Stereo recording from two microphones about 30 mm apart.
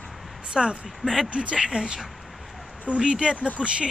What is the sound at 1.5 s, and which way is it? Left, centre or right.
Speech, right.